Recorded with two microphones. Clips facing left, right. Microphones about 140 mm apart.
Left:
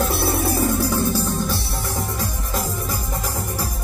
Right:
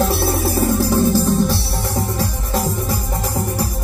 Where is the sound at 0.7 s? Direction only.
50° right (ahead or behind).